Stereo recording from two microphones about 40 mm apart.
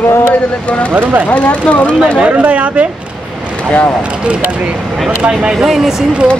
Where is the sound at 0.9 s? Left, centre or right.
Right.